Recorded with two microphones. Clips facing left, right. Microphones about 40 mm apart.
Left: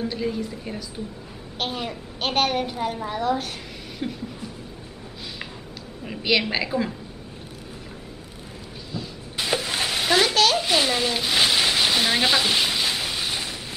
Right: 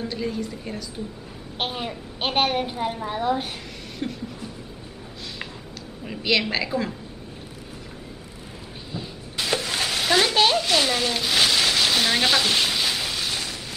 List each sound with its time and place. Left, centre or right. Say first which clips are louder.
0.0 s speech: left 1 dB; centre
1.7 s a woman's voice: even; centre
4.0 s speech: even; centre
6.0 s a woman's voice: even; centre
9.4 s stir: even; centre
10.5 s a sound: even; centre